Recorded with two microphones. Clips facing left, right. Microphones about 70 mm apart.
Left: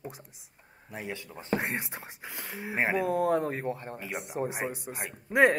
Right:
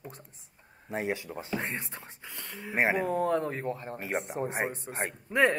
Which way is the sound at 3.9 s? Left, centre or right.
Right.